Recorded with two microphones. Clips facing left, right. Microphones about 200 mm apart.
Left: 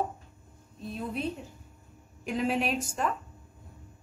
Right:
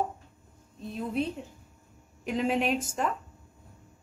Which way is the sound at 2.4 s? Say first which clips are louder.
Right 1 dB; 20° right (ahead or behind).